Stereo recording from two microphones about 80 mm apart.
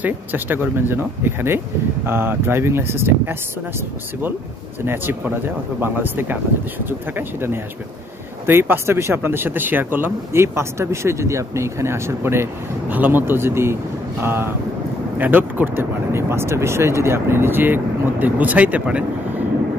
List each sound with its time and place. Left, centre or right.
0.0 s speech: right
4.8 s speech: right